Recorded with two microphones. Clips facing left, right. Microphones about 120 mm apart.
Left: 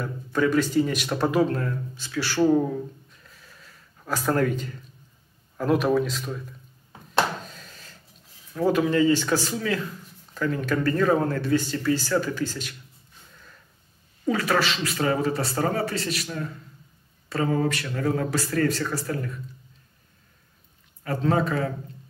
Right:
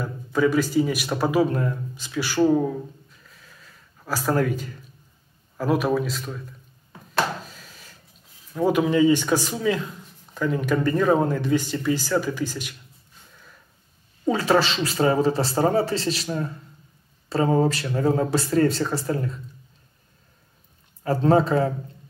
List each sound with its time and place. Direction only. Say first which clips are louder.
0.0 s speech: right 2 dB; 5° right (ahead or behind)
2.4 s a sound: right 1 dB; centre (ahead or behind)
5.6 s speech: even; 5° right (ahead or behind)
7.4 s a sound: left 1 dB; 5° right (ahead or behind)
8.5 s speech: right 2 dB; 15° right (ahead or behind)
14.2 s speech: right 3 dB; 30° right (ahead or behind)
21.0 s speech: right 5 dB; 30° right (ahead or behind)